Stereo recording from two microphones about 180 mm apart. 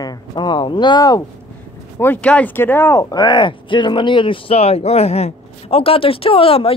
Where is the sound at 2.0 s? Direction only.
10° left (ahead or behind).